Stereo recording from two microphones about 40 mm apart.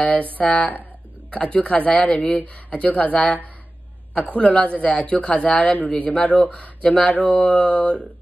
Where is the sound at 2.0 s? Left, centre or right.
Left.